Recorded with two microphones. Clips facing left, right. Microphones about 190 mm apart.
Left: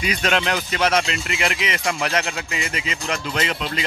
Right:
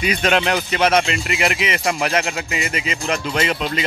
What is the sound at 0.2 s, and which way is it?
Speech, 15° right (ahead or behind).